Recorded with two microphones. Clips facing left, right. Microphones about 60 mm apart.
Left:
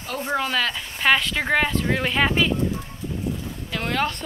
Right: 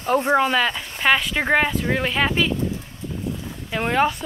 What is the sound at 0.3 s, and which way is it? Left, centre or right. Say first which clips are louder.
Speech: right 2 dB; centre.